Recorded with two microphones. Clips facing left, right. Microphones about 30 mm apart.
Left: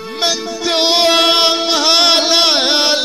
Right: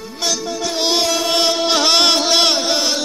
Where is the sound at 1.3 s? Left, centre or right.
Left.